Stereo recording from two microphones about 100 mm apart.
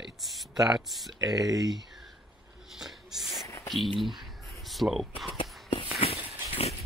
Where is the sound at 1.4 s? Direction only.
40° right (ahead or behind).